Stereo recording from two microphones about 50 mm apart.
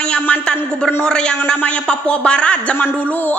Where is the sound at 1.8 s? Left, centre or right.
Centre.